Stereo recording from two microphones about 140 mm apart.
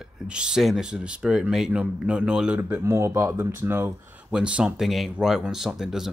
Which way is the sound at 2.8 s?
20° right (ahead or behind).